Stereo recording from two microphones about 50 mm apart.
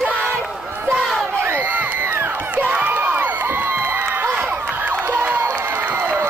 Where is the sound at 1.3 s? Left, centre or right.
Right.